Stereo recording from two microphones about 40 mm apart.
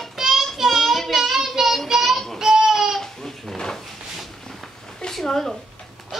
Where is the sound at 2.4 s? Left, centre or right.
Centre.